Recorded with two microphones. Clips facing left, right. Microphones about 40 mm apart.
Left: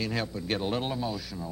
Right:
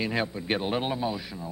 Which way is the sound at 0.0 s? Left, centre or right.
Right.